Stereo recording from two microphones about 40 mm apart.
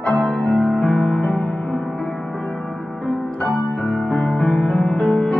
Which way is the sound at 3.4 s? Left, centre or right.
Left.